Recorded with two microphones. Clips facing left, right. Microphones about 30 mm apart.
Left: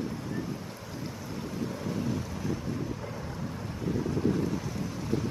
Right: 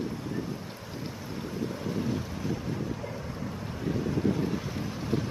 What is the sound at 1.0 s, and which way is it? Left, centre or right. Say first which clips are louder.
Boat: even; centre.